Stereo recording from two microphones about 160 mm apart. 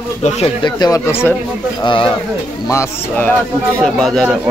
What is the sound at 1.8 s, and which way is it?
Speech, 30° left (ahead or behind).